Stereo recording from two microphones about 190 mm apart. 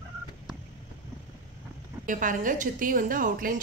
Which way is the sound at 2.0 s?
45° right (ahead or behind).